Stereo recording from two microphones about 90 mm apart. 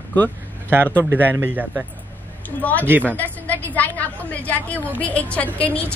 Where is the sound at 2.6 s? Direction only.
20° left (ahead or behind).